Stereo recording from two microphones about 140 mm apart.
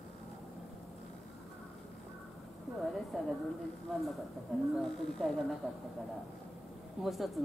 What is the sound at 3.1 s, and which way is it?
Speech, centre (ahead or behind).